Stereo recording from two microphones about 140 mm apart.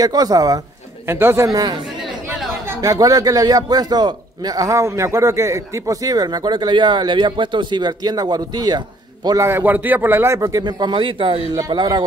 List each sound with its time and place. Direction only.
0.0 s a man's voice: 25° right (ahead or behind)
1.0 s a man's voice: 15° right (ahead or behind)
2.8 s a man's voice: 25° right (ahead or behind)
9.4 s a man's voice: 15° right (ahead or behind); by 12.0 s 30° right (ahead or behind)